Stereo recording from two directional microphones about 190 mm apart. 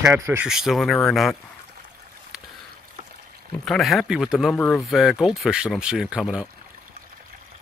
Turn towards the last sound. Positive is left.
turn(degrees=-5)  # may be behind; listen again after turning